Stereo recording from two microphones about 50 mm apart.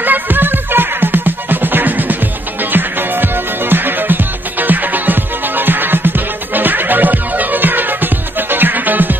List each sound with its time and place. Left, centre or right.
0.0 s music: right